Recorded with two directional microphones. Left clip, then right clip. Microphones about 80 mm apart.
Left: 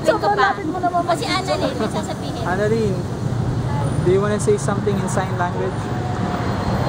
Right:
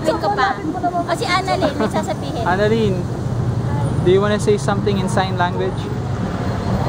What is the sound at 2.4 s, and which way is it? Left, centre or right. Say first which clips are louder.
Speech: right 4 dB; centre.